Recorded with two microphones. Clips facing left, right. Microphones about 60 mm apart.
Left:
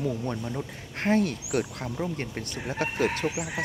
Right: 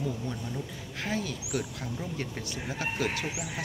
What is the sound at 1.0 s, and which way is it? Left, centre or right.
Speech, left.